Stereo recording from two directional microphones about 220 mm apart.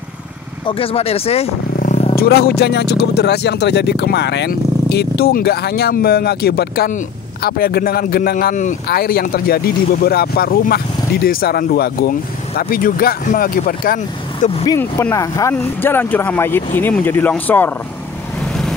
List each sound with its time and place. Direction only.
0.7 s speech: 25° left (ahead or behind)
2.1 s a man's voice: 45° left (ahead or behind); by 14.8 s 25° left (ahead or behind)
14.8 s speech: 10° left (ahead or behind)